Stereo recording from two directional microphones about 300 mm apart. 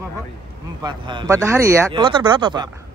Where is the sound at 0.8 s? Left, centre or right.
Centre.